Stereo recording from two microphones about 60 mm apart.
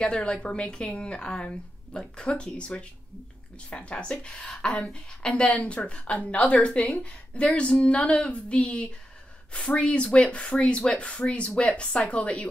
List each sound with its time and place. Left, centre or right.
0.0 s a woman's voice: centre